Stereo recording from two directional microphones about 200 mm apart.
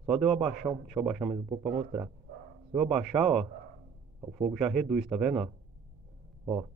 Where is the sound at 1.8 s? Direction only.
30° right (ahead or behind).